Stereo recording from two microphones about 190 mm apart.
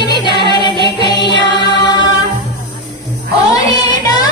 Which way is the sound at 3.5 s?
20° left (ahead or behind).